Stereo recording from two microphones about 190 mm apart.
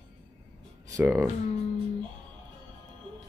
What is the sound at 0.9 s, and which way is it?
Speech, 10° right (ahead or behind).